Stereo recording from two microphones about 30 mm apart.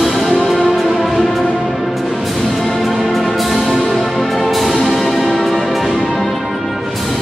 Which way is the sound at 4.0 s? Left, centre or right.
Centre.